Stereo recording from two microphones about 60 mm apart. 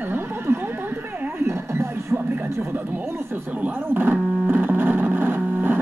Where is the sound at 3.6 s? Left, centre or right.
Right.